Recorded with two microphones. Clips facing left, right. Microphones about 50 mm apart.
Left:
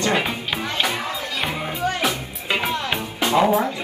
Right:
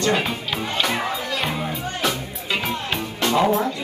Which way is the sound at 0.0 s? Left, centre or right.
Centre.